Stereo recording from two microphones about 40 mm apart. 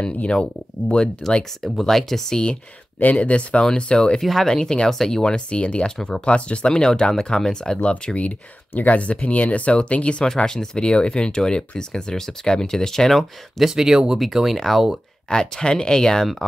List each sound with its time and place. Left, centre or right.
0.2 s speech: left
1.6 s speech: centre
3.0 s speech: left
4.2 s speech: centre
4.5 s speech: centre
5.2 s speech: left
5.9 s speech: centre
6.2 s speech: left
8.2 s speech: left; by 13.2 s centre
13.6 s speech: centre
15.2 s speech: centre